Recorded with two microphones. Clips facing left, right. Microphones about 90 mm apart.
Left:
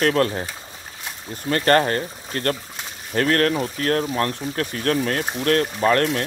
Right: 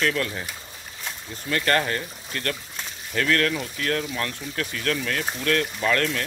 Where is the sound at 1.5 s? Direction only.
40° left (ahead or behind).